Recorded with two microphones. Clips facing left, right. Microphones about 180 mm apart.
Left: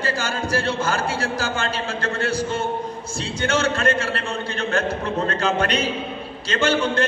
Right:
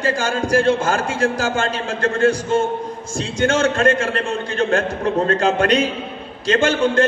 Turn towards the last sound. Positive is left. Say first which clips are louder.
# right 4 dB
turn(degrees=-45)  # may be behind; listen again after turning